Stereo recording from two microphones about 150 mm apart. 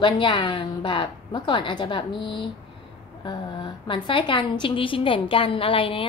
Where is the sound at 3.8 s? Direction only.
35° left (ahead or behind).